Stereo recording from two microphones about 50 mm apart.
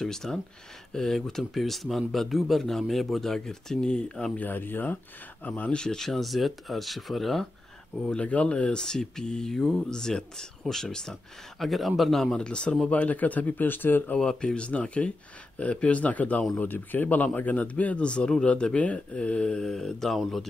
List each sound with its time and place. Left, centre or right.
0.0 s speech: centre
4.4 s speech: left
5.8 s speech: centre
8.1 s speech: left
11.6 s speech: centre
12.4 s speech: centre; by 14.1 s left
14.1 s speech: centre
19.7 s speech: centre